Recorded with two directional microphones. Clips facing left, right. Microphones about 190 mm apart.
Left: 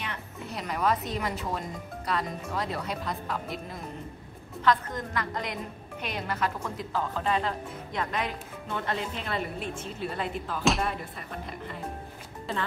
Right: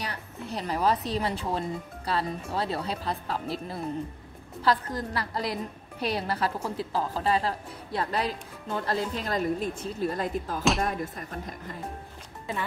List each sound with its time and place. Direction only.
0.0 s a woman's voice: 35° right (ahead or behind)